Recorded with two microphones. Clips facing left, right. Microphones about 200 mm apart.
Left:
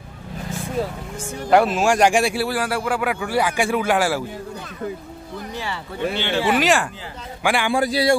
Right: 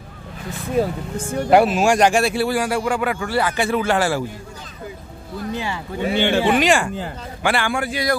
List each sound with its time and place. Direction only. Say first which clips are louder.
1.5 s speech: right 2 dB; 10° right (ahead or behind)
1.8 s speech: right 1 dB; centre (ahead or behind)
2.0 s speech: right 1 dB; 15° left (ahead or behind)
6.1 s speech: right 7 dB; 50° right (ahead or behind)
6.5 s speech: right 2 dB; centre (ahead or behind)
7.4 s speech: even; 15° left (ahead or behind)
7.7 s speech: left 4 dB; 35° left (ahead or behind)